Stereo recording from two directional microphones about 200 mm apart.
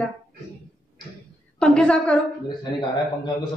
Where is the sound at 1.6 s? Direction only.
5° left (ahead or behind).